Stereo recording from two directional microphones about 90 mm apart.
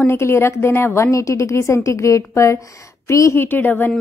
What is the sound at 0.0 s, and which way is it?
A woman's voice, 30° left (ahead or behind).